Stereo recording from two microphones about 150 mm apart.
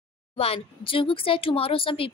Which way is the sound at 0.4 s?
40° left (ahead or behind).